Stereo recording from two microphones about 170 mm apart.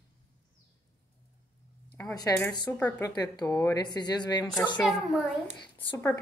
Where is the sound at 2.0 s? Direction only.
20° left (ahead or behind).